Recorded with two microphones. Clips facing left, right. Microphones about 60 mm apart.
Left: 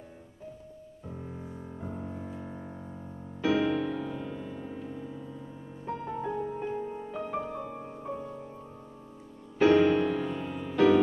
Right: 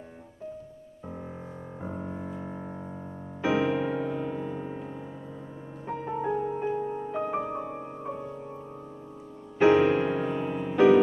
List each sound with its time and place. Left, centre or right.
1.0 s music: right
9.6 s music: centre